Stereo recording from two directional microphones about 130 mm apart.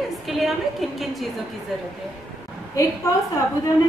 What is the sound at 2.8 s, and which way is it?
Speech, 25° left (ahead or behind).